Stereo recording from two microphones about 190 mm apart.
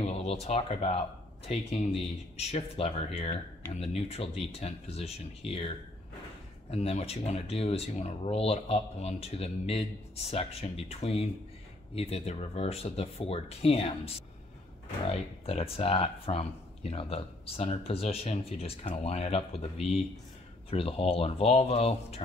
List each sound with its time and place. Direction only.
0.0 s speech: 35° left (ahead or behind)
6.7 s speech: 35° left (ahead or behind)
15.4 s speech: 30° left (ahead or behind)